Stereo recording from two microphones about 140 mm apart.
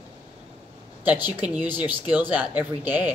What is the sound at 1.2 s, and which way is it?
Speech, 30° left (ahead or behind).